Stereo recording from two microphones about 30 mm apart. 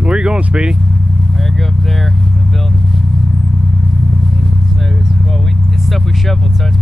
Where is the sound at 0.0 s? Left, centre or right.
Right.